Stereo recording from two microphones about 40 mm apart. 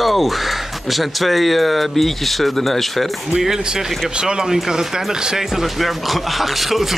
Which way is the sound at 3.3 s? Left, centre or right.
Centre.